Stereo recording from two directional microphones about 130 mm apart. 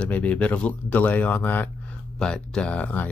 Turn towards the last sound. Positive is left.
turn(degrees=10)  # may be behind; listen again after turning